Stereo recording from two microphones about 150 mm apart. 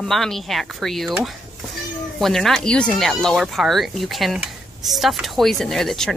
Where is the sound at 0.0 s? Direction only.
Centre (ahead or behind).